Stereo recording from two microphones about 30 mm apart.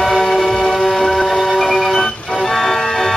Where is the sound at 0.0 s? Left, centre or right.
Centre.